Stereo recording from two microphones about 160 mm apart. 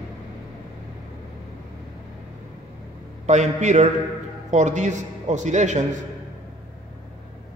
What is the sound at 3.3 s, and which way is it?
A man's voice, 45° right (ahead or behind).